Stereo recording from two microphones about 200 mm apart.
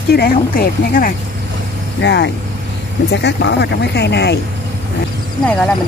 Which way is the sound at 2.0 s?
60° left (ahead or behind).